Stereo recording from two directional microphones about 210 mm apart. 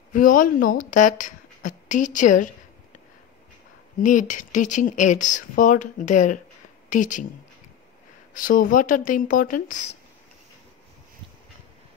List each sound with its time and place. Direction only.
0.1 s speech: 40° left (ahead or behind)
4.0 s speech: 35° left (ahead or behind)
8.3 s speech: 40° left (ahead or behind)